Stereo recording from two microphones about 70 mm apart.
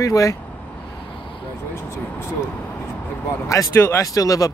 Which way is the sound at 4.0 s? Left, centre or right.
Left.